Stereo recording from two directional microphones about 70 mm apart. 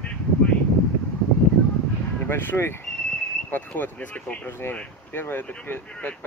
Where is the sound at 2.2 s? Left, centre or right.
Left.